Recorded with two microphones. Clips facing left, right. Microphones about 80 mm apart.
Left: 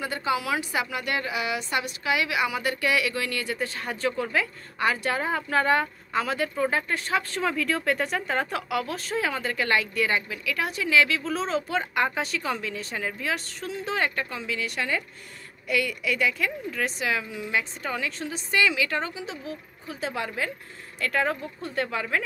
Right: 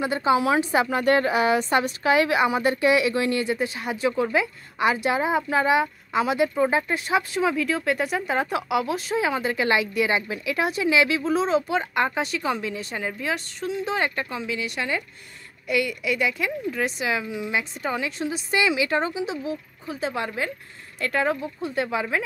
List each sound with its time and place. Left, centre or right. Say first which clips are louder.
0.0 s a woman's voice: right 6 dB; right
10.2 s a woman's voice: right 4 dB; right